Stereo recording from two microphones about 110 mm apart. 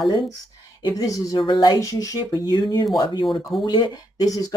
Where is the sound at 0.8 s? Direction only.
45° left (ahead or behind).